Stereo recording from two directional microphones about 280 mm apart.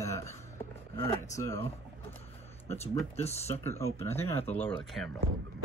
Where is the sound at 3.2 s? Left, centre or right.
Left.